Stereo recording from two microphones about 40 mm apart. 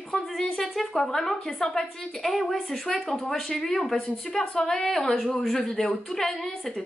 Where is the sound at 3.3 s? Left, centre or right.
Centre.